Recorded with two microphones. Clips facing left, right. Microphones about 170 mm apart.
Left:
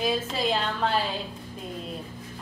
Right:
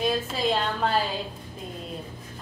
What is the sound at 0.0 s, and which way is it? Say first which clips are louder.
Speech: right 1 dB; centre (ahead or behind).